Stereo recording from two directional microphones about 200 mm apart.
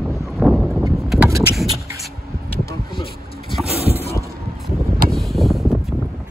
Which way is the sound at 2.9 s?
25° left (ahead or behind).